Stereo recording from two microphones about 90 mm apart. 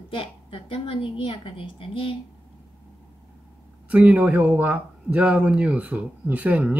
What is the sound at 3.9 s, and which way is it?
Speech, 15° right (ahead or behind).